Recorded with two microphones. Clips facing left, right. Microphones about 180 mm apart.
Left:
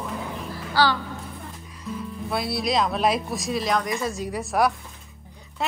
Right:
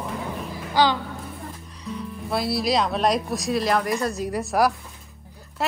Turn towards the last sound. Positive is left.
turn(degrees=0)  # may be behind; listen again after turning